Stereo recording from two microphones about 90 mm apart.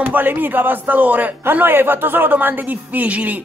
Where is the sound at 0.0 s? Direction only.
20° right (ahead or behind).